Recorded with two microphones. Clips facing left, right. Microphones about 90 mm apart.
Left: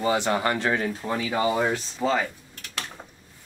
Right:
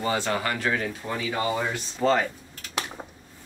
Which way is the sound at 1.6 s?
Centre (ahead or behind).